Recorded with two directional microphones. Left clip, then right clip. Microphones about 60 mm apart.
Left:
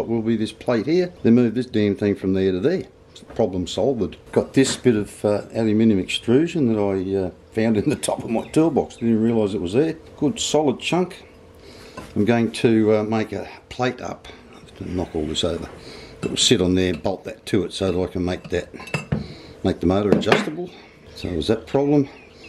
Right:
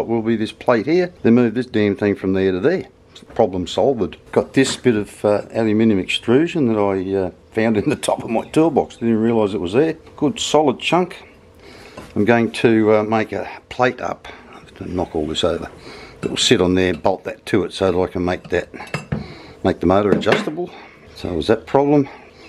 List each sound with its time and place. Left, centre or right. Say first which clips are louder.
0.0 s speech: right 3 dB; right